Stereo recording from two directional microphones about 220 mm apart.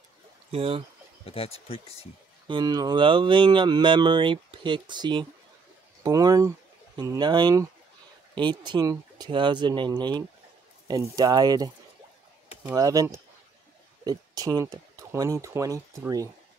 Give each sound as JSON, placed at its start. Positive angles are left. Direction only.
{"t": 0.5, "sound": "speech", "side_deg": -25}
{"t": 1.2, "sound": "speech", "side_deg": 25}
{"t": 2.4, "sound": "speech", "side_deg": -20}
{"t": 12.7, "sound": "speech", "side_deg": -15}